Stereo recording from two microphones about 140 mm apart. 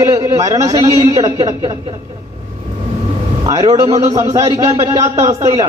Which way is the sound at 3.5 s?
25° right (ahead or behind).